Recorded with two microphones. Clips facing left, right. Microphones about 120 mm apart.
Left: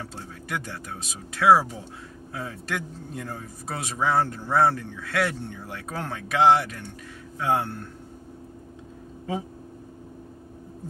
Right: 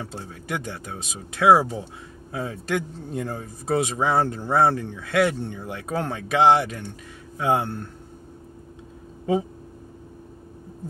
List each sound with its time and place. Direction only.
0.1 s a man's voice: 20° right (ahead or behind)